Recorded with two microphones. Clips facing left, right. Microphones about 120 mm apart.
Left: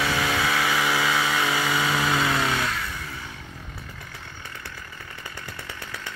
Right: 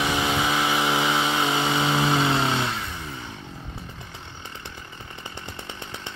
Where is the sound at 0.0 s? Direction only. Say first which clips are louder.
Right 1 dB; 20° right (ahead or behind).